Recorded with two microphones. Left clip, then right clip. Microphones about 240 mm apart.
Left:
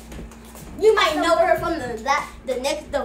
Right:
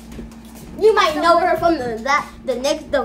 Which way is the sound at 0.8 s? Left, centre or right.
Right.